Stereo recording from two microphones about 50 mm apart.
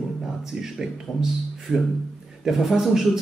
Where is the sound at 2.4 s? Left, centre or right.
Centre.